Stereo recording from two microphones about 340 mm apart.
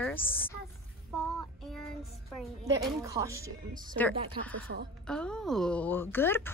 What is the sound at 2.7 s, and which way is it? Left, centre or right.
Speech, centre.